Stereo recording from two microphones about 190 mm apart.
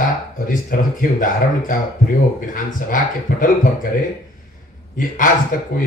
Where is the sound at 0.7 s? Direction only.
45° left (ahead or behind).